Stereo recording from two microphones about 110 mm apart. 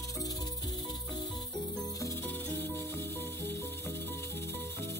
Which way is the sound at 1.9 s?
25° left (ahead or behind).